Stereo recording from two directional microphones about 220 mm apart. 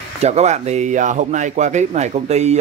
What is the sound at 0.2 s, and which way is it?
Speech, 30° right (ahead or behind).